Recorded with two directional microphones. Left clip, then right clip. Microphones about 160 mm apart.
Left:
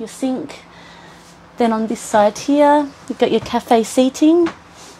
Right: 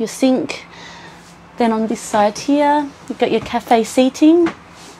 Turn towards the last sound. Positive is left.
turn(degrees=0)  # may be behind; listen again after turning